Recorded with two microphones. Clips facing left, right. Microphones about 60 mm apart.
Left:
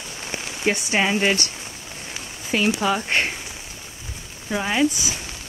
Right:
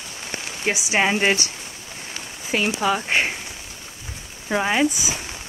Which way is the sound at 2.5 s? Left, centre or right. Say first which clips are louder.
Left 1 dB; centre.